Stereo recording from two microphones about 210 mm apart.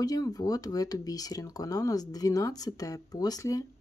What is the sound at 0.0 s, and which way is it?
Speech, 15° left (ahead or behind).